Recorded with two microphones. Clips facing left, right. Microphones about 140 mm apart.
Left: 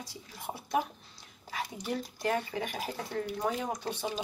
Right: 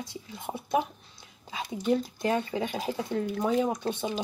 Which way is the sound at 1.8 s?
20° right (ahead or behind).